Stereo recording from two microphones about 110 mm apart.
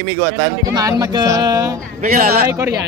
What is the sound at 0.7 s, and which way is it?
Speech, 30° right (ahead or behind).